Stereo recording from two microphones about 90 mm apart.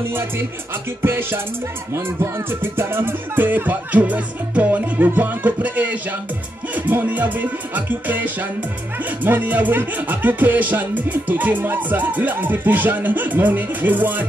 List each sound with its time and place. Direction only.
0.1 s music: 25° right (ahead or behind)